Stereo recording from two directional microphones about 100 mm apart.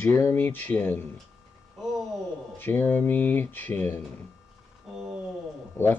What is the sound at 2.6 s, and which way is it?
Speech, 20° left (ahead or behind).